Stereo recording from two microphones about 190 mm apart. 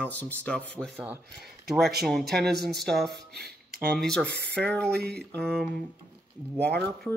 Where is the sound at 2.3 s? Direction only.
55° right (ahead or behind).